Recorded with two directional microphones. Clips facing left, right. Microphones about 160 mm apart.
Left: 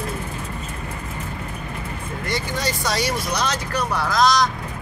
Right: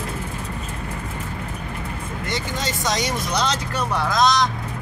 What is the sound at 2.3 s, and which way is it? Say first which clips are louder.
Speech: left 2 dB; 20° right (ahead or behind).